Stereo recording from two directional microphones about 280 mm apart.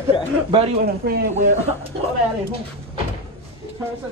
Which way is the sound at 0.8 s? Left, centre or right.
Right.